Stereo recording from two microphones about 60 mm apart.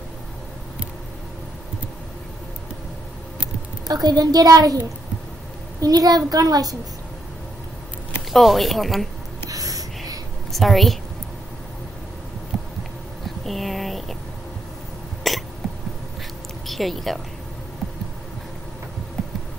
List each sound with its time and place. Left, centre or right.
3.8 s a child's voice: right
5.8 s a child's voice: right
8.3 s a woman's voice: centre
9.5 s wheeze: right
10.5 s a woman's voice: centre
12.5 s a sound: centre
13.5 s speech: centre
15.2 s hiccup: centre
16.6 s a woman's voice: centre